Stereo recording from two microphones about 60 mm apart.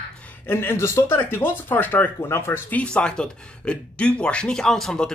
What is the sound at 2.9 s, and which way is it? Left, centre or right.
Speech, centre.